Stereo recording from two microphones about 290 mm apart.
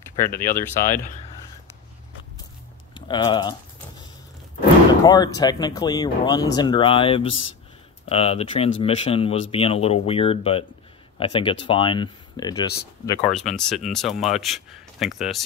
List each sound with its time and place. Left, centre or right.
0.1 s speech: centre
2.9 s speech: centre
5.0 s speech: centre
13.2 s speech: centre